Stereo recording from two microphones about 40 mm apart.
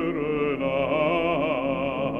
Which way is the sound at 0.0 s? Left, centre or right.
Centre.